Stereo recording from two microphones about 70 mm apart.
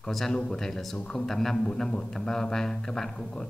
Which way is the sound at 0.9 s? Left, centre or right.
Centre.